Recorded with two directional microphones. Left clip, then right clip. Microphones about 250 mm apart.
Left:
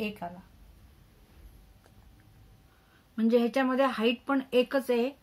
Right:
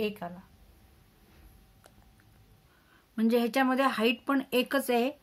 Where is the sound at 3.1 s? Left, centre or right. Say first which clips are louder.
Left 1 dB; right.